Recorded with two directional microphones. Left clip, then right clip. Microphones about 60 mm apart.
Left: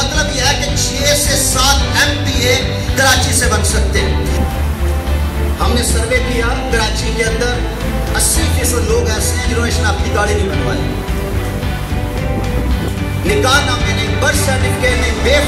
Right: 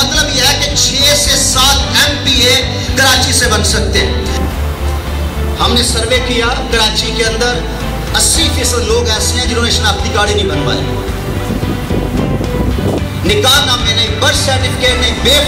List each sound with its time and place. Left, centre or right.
0.0 s music: centre
5.6 s speech: right
8.6 s speech: right
13.4 s speech: centre